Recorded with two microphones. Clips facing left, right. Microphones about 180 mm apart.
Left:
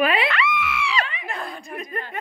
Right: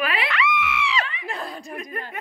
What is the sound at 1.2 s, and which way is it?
Chuckle, 35° right (ahead or behind).